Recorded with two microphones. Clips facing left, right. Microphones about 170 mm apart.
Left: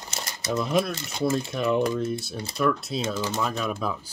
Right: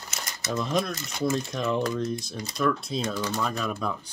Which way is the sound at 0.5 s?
5° left (ahead or behind).